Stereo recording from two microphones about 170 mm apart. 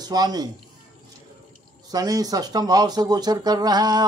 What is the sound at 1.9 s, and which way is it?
Speech, 20° right (ahead or behind).